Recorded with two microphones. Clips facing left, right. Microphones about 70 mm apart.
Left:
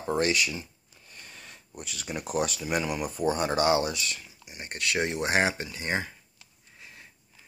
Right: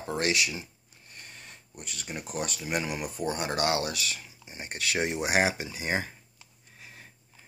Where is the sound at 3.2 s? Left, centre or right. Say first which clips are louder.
Left 4 dB; left.